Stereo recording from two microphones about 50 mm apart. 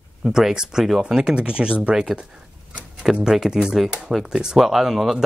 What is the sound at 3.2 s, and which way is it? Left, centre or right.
Speech, centre.